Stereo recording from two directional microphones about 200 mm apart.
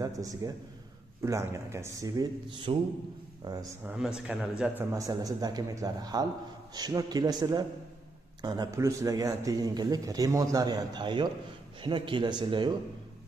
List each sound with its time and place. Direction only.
0.0 s a man's voice: 15° right (ahead or behind)
3.8 s a man's voice: 5° right (ahead or behind)
4.9 s a man's voice: 15° right (ahead or behind)